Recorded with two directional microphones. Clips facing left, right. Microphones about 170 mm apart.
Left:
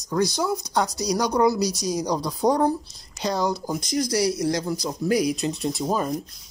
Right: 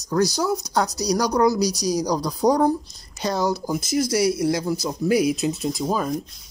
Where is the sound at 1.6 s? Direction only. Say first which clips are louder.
Right 3 dB; 25° left (ahead or behind).